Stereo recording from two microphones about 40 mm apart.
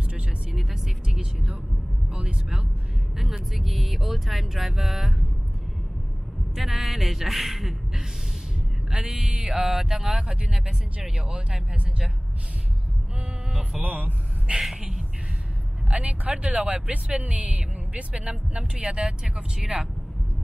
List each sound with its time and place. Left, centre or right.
0.5 s speech: centre
3.3 s speech: centre
6.5 s speech: centre
8.9 s speech: right
9.4 s speech: centre
13.5 s music: right
14.6 s speech: centre
15.9 s speech: right
18.8 s speech: centre